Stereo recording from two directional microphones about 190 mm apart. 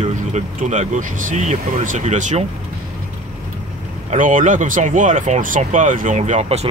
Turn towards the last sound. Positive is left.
turn(degrees=-35)  # may be behind; listen again after turning